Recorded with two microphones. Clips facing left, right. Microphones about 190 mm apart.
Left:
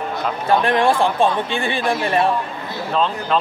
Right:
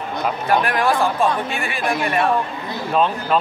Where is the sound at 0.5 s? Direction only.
25° left (ahead or behind).